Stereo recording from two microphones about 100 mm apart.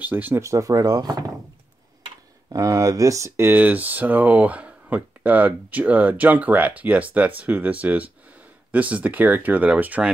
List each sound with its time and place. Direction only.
0.0 s speech: 20° right (ahead or behind)
0.4 s speech: 30° right (ahead or behind)
2.5 s speech: 35° right (ahead or behind); by 10.1 s 15° right (ahead or behind)